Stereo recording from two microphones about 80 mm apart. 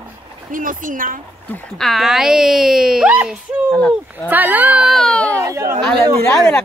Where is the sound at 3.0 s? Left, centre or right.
Centre.